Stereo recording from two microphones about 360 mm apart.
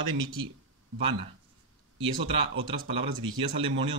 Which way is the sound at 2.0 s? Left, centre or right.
Centre.